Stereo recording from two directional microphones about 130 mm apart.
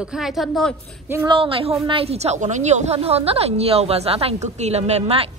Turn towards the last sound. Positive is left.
turn(degrees=-55)  # may be behind; listen again after turning